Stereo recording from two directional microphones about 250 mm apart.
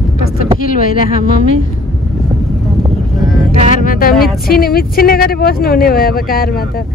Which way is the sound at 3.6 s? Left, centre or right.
Left.